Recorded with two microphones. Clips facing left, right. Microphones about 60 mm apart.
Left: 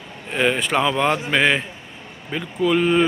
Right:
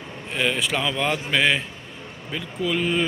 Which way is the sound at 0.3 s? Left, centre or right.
Left.